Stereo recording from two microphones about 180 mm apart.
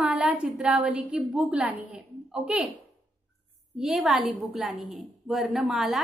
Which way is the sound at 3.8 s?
Centre (ahead or behind).